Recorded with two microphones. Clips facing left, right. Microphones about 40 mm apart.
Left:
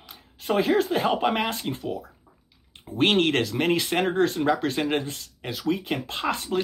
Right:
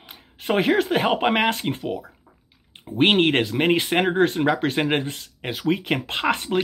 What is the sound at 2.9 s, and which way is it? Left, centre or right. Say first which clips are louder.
Speech: right 3 dB; right.